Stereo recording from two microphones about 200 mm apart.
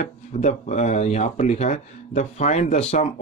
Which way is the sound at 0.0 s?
35° left (ahead or behind).